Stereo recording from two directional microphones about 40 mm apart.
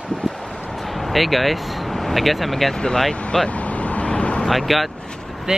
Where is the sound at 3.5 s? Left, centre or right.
Left.